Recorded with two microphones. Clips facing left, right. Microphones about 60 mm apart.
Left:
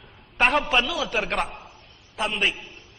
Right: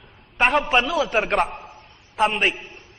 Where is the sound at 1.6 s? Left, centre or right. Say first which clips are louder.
Right 4 dB; right.